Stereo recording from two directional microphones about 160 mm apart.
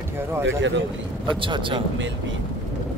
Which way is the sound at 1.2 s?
30° right (ahead or behind).